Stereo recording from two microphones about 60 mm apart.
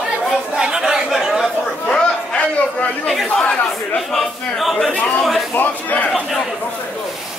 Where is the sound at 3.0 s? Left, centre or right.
Centre.